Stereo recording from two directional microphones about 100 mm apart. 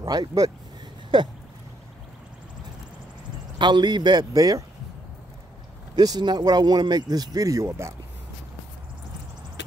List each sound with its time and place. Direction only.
0.0 s speech: 40° right (ahead or behind)
3.5 s a man's voice: 50° right (ahead or behind)
5.9 s speech: 45° right (ahead or behind); by 7.9 s 25° right (ahead or behind)